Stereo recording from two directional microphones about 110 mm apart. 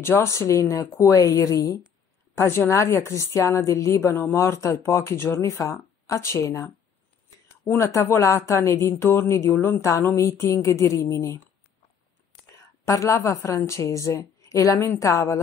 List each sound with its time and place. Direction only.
0.0 s a woman's voice: 25° left (ahead or behind)
12.8 s speech: 25° left (ahead or behind)